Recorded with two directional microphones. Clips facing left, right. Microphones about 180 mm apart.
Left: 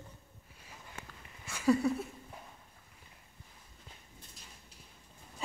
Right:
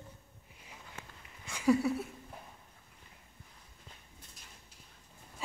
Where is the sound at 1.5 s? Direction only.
15° right (ahead or behind).